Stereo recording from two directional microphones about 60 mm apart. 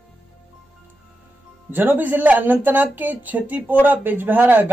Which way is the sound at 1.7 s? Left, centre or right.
Right.